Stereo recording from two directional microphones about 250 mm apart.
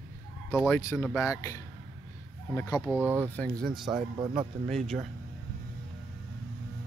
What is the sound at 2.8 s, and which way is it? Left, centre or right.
Speech, centre.